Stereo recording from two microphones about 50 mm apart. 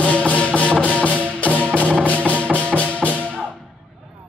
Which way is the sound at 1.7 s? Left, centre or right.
Right.